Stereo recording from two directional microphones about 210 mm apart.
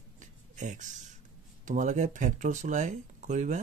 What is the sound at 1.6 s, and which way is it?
Speech, 35° right (ahead or behind).